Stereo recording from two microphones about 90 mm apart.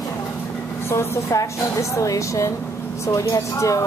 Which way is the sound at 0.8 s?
35° left (ahead or behind).